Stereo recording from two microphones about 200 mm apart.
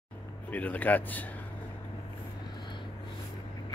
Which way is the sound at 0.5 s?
5° left (ahead or behind).